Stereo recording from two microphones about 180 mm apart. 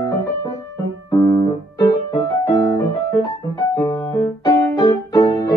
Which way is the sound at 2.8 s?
20° left (ahead or behind).